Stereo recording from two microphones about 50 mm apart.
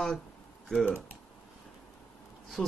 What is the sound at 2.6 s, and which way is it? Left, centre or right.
Speech, centre.